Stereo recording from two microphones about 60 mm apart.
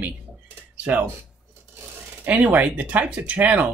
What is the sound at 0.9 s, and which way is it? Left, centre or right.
Speech, right.